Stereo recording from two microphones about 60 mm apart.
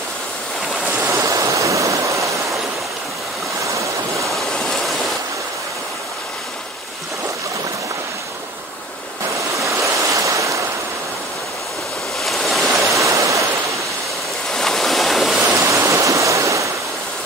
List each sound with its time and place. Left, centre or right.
1.0 s waves: right
1.3 s waterfall: right
3.6 s waves: right
4.3 s waves: centre
9.6 s waves: right
12.2 s waves: centre
12.8 s stream: right
14.5 s waves: centre
15.5 s waterfall: right